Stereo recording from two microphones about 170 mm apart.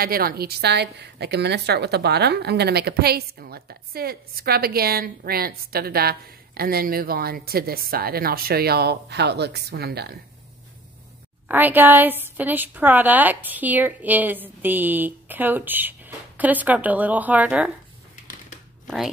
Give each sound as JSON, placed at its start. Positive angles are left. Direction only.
{"t": 0.0, "sound": "a woman's voice", "side_deg": -60}
{"t": 11.4, "sound": "a woman's voice", "side_deg": -10}